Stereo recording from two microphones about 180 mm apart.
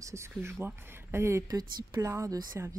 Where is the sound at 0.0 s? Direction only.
15° right (ahead or behind).